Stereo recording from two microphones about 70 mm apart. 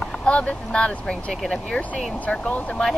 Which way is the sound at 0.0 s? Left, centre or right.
Centre.